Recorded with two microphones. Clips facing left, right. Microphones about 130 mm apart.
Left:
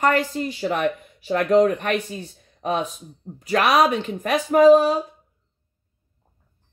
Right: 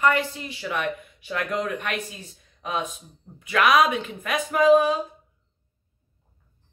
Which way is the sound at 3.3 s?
40° left (ahead or behind).